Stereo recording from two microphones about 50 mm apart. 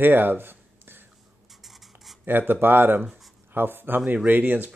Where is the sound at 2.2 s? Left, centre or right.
Right.